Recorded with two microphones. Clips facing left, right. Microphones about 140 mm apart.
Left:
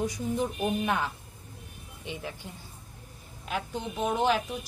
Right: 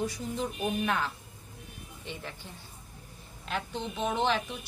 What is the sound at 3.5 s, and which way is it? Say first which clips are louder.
A woman's voice: left 1 dB; 5° left (ahead or behind).